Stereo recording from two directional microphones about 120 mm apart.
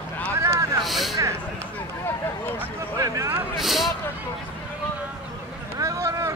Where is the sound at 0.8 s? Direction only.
Centre (ahead or behind).